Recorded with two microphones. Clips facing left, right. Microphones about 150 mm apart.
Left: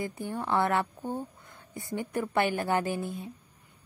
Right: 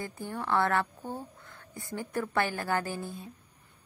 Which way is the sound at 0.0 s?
20° left (ahead or behind).